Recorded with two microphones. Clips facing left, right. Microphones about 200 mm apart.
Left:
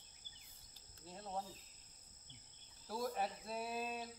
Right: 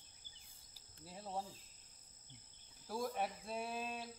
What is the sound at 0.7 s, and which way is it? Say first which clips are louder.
Cricket: even; 5° right (ahead or behind).